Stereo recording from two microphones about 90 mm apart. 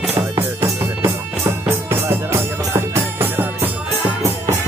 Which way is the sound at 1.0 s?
30° right (ahead or behind).